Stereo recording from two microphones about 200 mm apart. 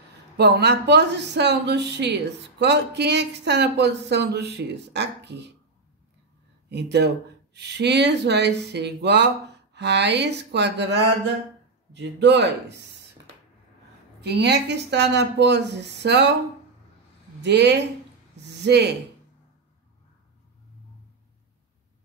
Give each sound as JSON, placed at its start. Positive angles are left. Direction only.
{"t": 0.4, "sound": "speech", "side_deg": -55}
{"t": 6.7, "sound": "speech", "side_deg": -55}
{"t": 11.9, "sound": "speech", "side_deg": -60}
{"t": 14.2, "sound": "speech", "side_deg": -55}
{"t": 17.4, "sound": "speech", "side_deg": -60}